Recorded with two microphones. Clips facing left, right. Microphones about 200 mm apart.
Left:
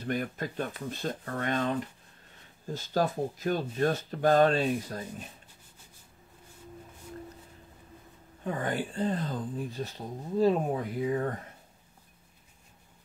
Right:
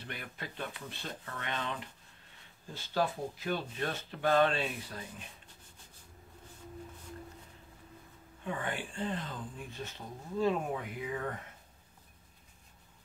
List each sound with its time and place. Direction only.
0.0 s speech: 45° left (ahead or behind)
8.5 s speech: 40° left (ahead or behind)